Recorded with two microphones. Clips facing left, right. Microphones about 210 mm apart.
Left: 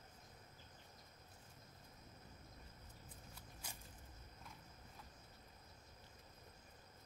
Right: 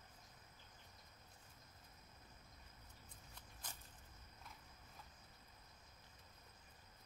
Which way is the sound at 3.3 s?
10° left (ahead or behind).